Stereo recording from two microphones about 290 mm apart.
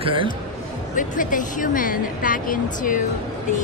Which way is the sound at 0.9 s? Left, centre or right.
Left.